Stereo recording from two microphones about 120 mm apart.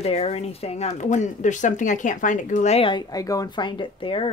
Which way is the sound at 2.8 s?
35° left (ahead or behind).